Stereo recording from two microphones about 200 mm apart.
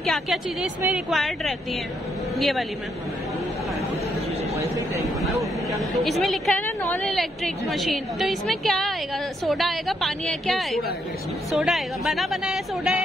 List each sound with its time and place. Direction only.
0.0 s a woman's voice: centre (ahead or behind)
4.6 s vehicle: 15° right (ahead or behind)
5.2 s a sound: centre (ahead or behind)
5.8 s a woman's voice: centre (ahead or behind)